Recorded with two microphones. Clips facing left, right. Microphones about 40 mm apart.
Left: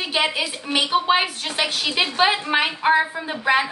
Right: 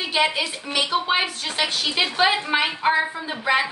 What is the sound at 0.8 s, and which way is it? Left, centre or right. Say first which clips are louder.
Speech: left 4 dB; left.